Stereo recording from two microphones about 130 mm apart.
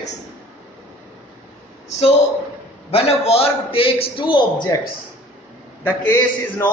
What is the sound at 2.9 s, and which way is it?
A man's voice, 50° left (ahead or behind).